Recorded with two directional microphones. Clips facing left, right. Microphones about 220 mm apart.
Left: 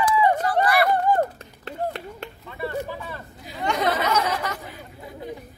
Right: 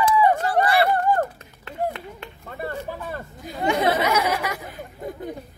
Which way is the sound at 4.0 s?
10° right (ahead or behind).